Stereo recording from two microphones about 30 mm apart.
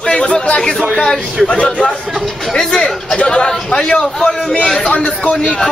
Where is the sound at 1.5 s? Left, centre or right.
Left.